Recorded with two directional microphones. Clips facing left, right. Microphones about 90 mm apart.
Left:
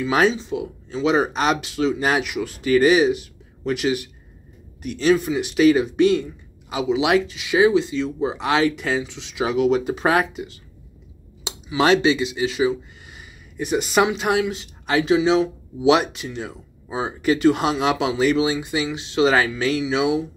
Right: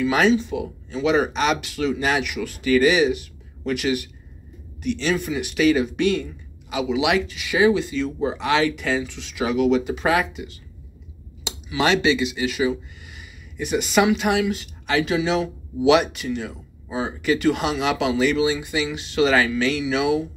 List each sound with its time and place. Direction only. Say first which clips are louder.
0.0 s speech: right 1 dB; 30° left (ahead or behind)
5.1 s speech: left 4 dB; 25° left (ahead or behind)
8.4 s speech: left 1 dB; 30° left (ahead or behind)
13.6 s speech: left 1 dB; 35° left (ahead or behind)